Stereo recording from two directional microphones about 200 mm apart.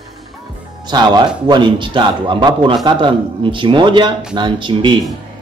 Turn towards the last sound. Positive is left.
turn(degrees=-25)  # may be behind; listen again after turning